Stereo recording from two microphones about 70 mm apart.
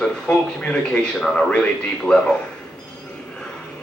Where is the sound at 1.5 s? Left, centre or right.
Centre.